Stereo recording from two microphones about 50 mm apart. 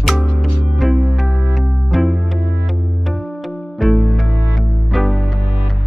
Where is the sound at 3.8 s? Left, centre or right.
Centre.